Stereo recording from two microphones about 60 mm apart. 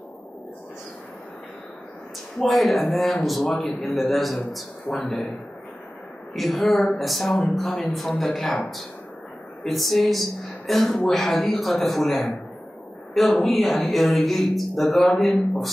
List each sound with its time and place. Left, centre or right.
2.4 s speech: centre
6.3 s speech: centre
9.7 s a man's voice: centre